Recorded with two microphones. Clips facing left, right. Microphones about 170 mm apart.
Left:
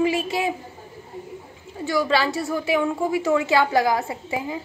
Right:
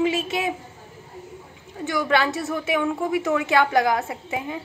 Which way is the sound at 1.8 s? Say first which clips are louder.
Left 1 dB; centre (ahead or behind).